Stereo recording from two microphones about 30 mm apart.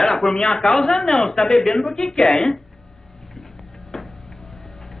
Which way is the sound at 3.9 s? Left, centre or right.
Centre.